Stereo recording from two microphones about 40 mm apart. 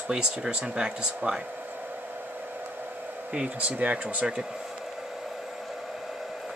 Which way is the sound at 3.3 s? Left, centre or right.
Right.